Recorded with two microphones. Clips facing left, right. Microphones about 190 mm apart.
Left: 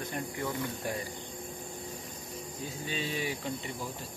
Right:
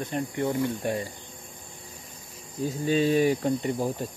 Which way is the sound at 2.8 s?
45° right (ahead or behind).